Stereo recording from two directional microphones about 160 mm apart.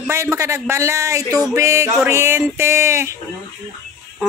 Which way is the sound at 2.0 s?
15° right (ahead or behind).